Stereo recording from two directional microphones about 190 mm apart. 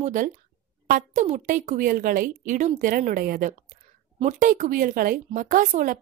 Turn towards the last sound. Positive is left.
turn(degrees=-45)  # may be behind; listen again after turning